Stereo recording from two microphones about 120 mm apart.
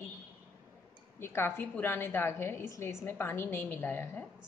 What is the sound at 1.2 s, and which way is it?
A woman's voice, 20° left (ahead or behind).